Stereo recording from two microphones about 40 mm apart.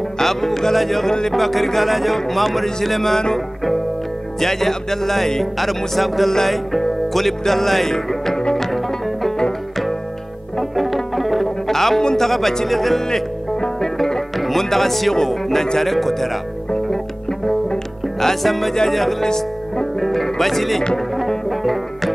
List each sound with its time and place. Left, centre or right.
0.2 s speech: centre
1.3 s music: centre
2.1 s speech: centre
4.4 s speech: centre
6.3 s music: centre
10.6 s music: centre
12.0 s speech: centre
12.3 s music: centre
18.2 s speech: centre
18.9 s music: centre
19.2 s music: centre
20.0 s music: centre